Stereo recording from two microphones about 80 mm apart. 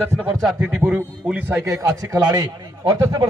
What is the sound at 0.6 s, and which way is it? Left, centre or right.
Speech, centre.